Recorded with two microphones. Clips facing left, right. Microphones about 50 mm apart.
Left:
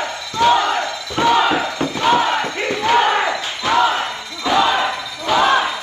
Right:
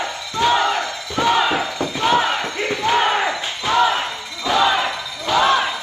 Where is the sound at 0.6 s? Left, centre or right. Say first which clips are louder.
Left 1 dB; left.